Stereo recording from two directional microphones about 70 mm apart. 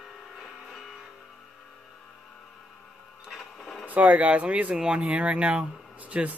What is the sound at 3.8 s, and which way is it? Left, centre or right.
Speech, right.